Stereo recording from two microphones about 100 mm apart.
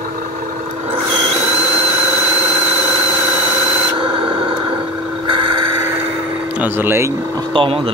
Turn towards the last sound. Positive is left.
turn(degrees=-65)  # may be behind; listen again after turning